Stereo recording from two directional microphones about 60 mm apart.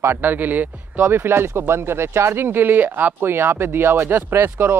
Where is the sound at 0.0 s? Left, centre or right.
Right.